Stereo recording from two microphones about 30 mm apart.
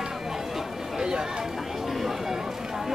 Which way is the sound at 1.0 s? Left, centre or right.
Right.